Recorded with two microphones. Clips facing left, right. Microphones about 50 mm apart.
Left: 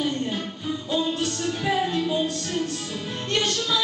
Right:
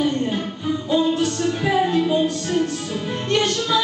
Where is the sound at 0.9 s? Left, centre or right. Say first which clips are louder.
Right 6 dB; centre.